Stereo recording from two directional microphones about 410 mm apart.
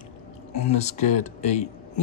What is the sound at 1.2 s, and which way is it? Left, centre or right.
Speech, centre.